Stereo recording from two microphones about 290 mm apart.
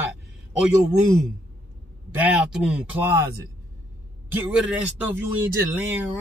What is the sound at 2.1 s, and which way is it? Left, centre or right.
Speech, centre.